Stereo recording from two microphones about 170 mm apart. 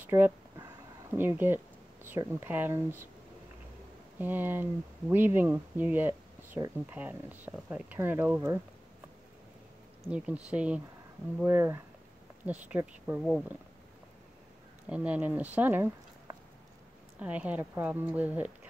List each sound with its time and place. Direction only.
0.0 s speech: 10° right (ahead or behind)
4.2 s speech: 10° right (ahead or behind)
10.1 s speech: 5° right (ahead or behind)
14.9 s speech: 10° right (ahead or behind)